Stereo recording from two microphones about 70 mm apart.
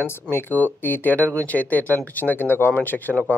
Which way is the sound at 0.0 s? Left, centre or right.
Left.